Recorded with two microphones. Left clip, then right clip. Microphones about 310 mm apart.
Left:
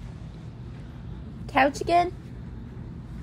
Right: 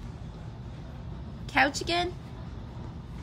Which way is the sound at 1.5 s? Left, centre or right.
Centre.